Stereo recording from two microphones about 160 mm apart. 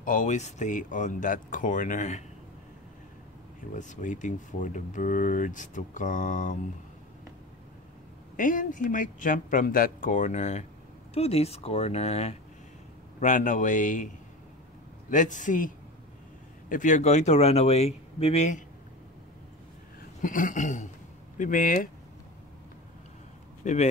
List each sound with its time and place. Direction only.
0.0 s speech: 55° left (ahead or behind)
3.7 s speech: 50° left (ahead or behind)
8.4 s speech: 55° left (ahead or behind); by 12.4 s 40° left (ahead or behind)
13.2 s speech: 50° left (ahead or behind)
20.2 s speech: 55° left (ahead or behind)
23.6 s speech: 50° left (ahead or behind)